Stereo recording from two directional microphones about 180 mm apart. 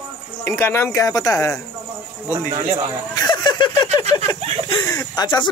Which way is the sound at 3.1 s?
25° left (ahead or behind).